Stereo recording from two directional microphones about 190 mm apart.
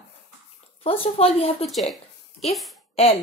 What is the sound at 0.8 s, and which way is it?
Speech, 30° left (ahead or behind).